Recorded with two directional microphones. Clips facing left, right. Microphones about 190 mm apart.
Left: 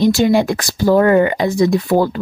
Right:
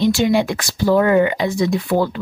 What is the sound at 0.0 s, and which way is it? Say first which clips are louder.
Speech: left 3 dB; 40° left (ahead or behind).